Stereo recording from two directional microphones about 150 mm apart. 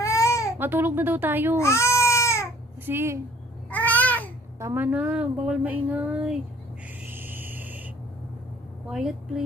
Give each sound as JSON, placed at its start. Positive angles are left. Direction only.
{"t": 0.0, "sound": "baby cry", "side_deg": 20}
{"t": 0.6, "sound": "a woman's voice", "side_deg": -15}
{"t": 1.6, "sound": "baby cry", "side_deg": 20}
{"t": 2.8, "sound": "speech", "side_deg": -15}
{"t": 3.7, "sound": "babbling", "side_deg": 10}
{"t": 4.6, "sound": "a woman's voice", "side_deg": -15}
{"t": 7.1, "sound": "a sound", "side_deg": -15}
{"t": 8.8, "sound": "speech", "side_deg": -5}